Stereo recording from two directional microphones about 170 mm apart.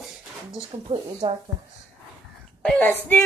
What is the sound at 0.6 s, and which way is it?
Speech, 30° right (ahead or behind).